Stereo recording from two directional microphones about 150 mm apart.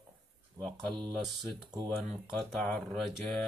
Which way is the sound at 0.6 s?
20° right (ahead or behind).